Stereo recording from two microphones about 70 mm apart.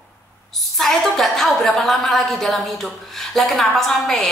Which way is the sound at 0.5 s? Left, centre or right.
Centre.